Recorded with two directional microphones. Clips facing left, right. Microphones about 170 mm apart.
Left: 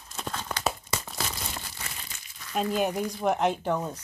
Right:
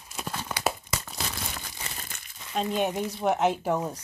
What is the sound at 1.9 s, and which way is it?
Crumpling, 55° right (ahead or behind).